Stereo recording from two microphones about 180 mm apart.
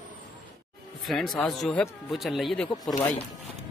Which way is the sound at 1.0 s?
Centre (ahead or behind).